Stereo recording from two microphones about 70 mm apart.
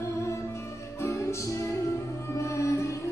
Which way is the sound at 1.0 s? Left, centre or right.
Left.